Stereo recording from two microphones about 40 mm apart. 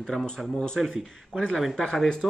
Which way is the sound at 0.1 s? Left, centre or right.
Centre.